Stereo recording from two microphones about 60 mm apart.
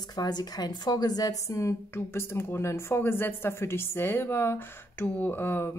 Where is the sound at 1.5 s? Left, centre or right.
Left.